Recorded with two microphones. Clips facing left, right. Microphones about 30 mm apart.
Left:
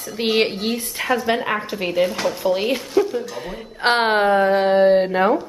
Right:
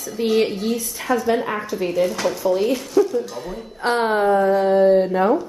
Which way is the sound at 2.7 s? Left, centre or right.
Left.